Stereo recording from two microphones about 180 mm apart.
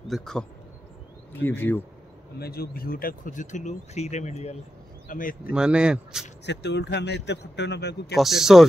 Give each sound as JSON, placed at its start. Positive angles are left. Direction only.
{"t": 0.1, "sound": "speech", "side_deg": 5}
{"t": 2.3, "sound": "speech", "side_deg": 60}
{"t": 5.0, "sound": "speech", "side_deg": 50}
{"t": 5.5, "sound": "speech", "side_deg": -5}
{"t": 6.4, "sound": "a man's voice", "side_deg": 75}
{"t": 8.2, "sound": "speech", "side_deg": 0}